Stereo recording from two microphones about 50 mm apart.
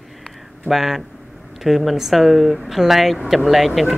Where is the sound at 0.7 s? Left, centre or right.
Centre.